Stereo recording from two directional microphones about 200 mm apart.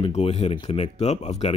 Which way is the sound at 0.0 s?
30° left (ahead or behind).